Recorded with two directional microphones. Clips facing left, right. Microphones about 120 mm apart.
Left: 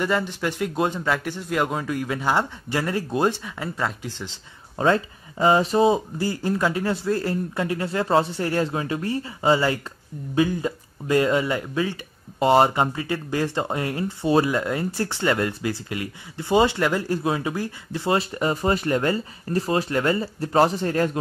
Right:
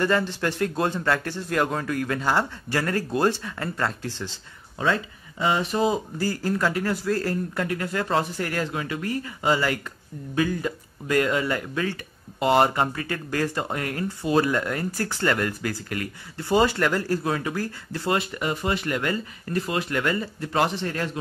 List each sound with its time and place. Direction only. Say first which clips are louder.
0.0 s speech: right 1 dB; 10° left (ahead or behind)
4.7 s speech: left 4 dB; 40° left (ahead or behind); by 12.0 s 15° left (ahead or behind)
12.4 s speech: left 2 dB; 30° left (ahead or behind)
18.1 s speech: left 4 dB; 35° left (ahead or behind)